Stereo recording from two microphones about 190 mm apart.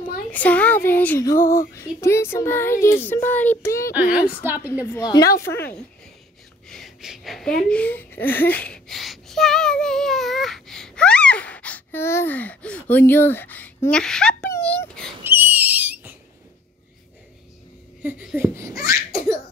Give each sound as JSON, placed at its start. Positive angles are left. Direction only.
{"t": 0.3, "sound": "speech", "side_deg": 10}
{"t": 1.4, "sound": "speech", "side_deg": 45}
{"t": 1.8, "sound": "speech", "side_deg": 15}
{"t": 3.9, "sound": "laughter", "side_deg": -5}
{"t": 4.9, "sound": "a woman's voice", "side_deg": 20}
{"t": 6.7, "sound": "a child's voice", "side_deg": 0}
{"t": 15.2, "sound": "a sound", "side_deg": -10}
{"t": 18.0, "sound": "laughter", "side_deg": -10}